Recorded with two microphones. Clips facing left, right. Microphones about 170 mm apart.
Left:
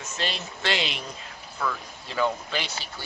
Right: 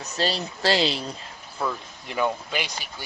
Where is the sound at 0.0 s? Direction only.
35° right (ahead or behind).